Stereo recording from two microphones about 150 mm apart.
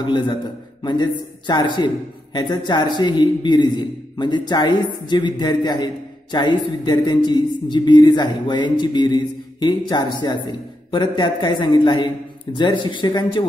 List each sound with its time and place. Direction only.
0.0 s a woman's voice: 30° left (ahead or behind)